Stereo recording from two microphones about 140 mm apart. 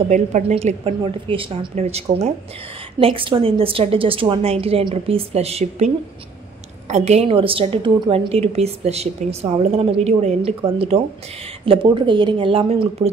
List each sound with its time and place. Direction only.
0.1 s a woman's voice: 55° right (ahead or behind)
3.0 s a woman's voice: 40° right (ahead or behind)
6.9 s a woman's voice: 50° right (ahead or behind)